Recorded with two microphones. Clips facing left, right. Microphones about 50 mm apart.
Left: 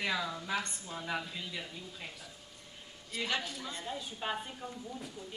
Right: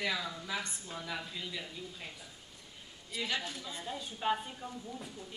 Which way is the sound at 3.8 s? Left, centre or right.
Centre.